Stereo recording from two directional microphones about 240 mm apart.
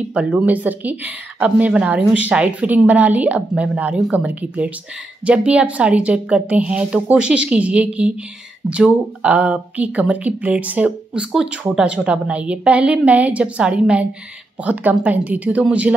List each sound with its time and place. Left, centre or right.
0.1 s speech: centre